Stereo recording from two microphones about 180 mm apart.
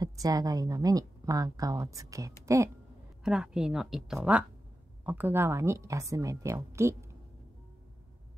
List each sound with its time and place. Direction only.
0.0 s a woman's voice: 20° right (ahead or behind)
3.3 s a woman's voice: 5° right (ahead or behind)